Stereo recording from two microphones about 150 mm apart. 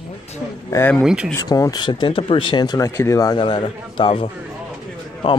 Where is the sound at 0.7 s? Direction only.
15° left (ahead or behind).